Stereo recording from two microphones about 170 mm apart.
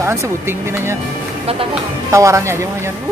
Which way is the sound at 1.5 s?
35° right (ahead or behind).